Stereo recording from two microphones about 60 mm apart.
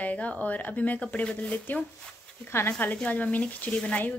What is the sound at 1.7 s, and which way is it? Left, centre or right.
A woman's voice, left.